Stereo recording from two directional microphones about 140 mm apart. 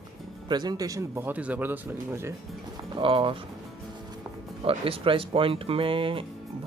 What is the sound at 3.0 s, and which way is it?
Speech, 40° right (ahead or behind).